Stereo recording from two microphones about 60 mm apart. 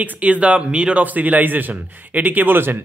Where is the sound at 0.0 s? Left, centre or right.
Right.